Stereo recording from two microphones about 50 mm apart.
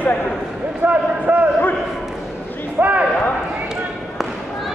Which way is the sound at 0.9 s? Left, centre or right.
Right.